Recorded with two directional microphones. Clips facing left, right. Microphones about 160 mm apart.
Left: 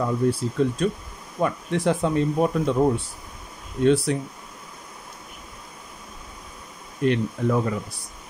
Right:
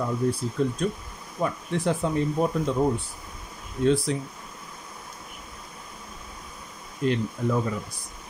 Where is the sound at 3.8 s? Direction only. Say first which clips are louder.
Left 3 dB; 70° left (ahead or behind).